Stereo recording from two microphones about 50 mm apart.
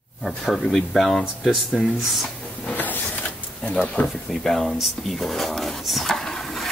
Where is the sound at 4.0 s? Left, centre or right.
Left.